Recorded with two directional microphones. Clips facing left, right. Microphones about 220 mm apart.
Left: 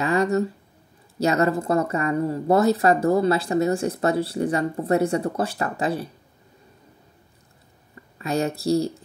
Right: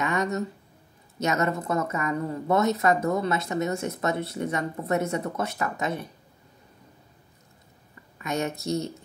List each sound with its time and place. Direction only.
0.0 s a sound: 30° left (ahead or behind)
1.2 s speech: 35° left (ahead or behind)
8.2 s speech: 35° left (ahead or behind)